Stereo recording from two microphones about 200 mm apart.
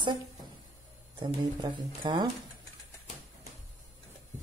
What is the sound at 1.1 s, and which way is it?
Speech, 25° right (ahead or behind).